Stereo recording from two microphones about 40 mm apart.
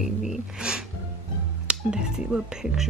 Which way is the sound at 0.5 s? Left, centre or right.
Right.